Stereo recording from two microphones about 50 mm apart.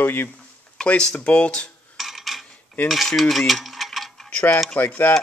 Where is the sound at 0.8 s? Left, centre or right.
Centre.